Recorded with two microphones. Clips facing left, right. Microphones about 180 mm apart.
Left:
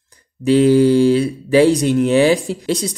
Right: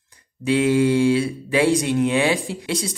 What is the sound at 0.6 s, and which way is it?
Speech, 35° left (ahead or behind).